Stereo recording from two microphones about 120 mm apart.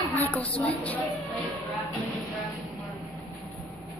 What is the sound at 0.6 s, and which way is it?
Speech, 10° left (ahead or behind).